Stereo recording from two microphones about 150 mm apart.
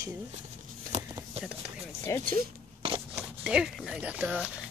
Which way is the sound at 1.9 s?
20° left (ahead or behind).